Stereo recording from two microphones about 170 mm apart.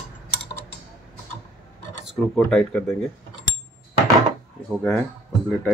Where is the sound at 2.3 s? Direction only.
5° left (ahead or behind).